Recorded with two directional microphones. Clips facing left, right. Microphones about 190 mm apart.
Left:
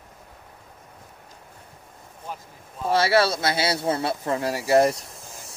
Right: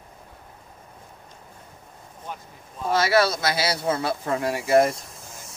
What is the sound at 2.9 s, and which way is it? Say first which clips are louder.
Speech: even; 30° left (ahead or behind).